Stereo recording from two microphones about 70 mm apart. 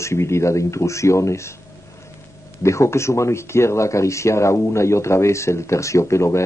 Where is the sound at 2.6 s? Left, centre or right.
Left.